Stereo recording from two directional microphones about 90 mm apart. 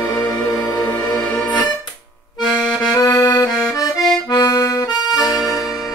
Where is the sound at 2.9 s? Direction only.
45° left (ahead or behind).